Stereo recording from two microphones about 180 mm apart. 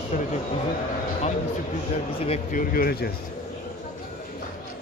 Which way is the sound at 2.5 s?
55° left (ahead or behind).